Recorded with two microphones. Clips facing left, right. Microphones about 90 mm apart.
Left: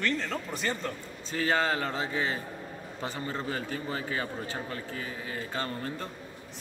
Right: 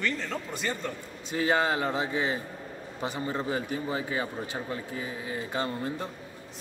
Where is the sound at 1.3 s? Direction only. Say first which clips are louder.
Right 2 dB; 15° right (ahead or behind).